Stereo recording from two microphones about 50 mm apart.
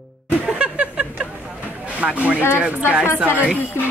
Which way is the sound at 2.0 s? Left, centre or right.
Right.